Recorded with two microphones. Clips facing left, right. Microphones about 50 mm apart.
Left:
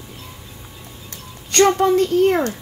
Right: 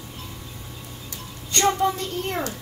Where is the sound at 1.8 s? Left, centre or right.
Left.